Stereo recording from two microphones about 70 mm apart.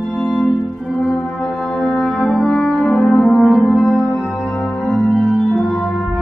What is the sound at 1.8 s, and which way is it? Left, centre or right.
Brass instrument, centre.